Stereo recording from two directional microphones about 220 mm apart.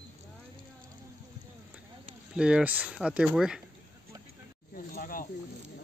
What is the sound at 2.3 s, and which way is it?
Speech, 5° right (ahead or behind).